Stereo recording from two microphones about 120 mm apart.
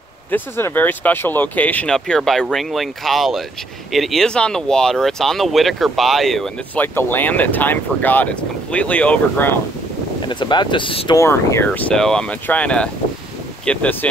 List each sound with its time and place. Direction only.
0.3 s speech: 15° left (ahead or behind)
6.7 s speech: 15° left (ahead or behind)
10.2 s speech: 40° left (ahead or behind)
11.1 s speech: 20° left (ahead or behind)